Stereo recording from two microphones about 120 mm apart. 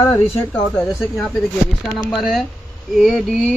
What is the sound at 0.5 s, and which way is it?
Speech, 10° left (ahead or behind).